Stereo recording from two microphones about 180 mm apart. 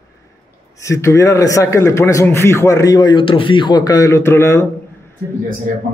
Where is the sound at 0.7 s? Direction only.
15° left (ahead or behind).